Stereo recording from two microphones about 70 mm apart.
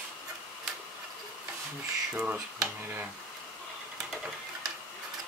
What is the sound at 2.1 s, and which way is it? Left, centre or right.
Speech, centre.